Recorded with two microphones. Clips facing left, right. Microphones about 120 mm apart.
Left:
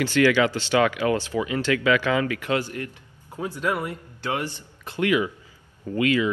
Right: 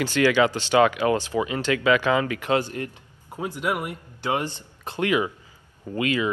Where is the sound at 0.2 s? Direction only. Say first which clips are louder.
Even; 30° right (ahead or behind).